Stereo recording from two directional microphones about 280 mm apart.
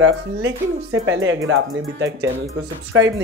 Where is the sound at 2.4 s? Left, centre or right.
Right.